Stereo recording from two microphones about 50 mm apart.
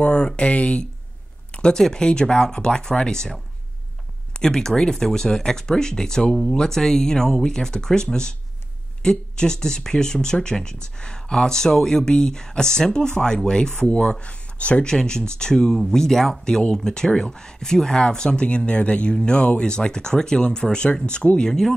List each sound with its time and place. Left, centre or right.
0.0 s speech: left
4.4 s speech: centre